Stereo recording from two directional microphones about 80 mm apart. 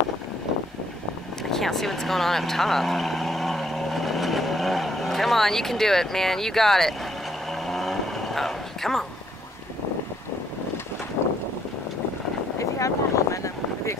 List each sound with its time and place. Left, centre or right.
1.5 s speech: centre
7.6 s vehicle: centre
12.5 s a sound: left